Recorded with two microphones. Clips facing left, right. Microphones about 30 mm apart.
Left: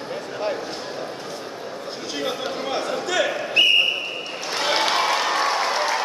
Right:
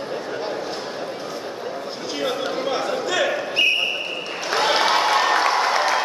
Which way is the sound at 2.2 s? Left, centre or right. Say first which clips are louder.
Right 3 dB; centre.